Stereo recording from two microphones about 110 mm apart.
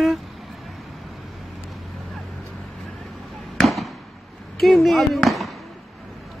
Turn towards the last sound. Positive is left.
turn(degrees=0)  # may be behind; listen again after turning